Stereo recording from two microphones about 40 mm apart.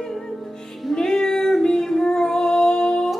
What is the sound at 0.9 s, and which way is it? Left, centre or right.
Female singing, centre.